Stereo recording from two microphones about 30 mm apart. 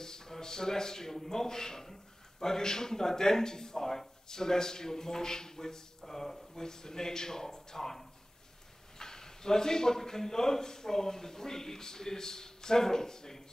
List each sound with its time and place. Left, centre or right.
0.0 s a man's voice: centre